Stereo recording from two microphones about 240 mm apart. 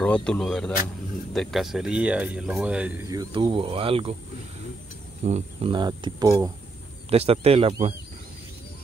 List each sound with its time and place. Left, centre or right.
0.0 s speech: centre; by 4.2 s right
5.2 s speech: right
7.1 s speech: right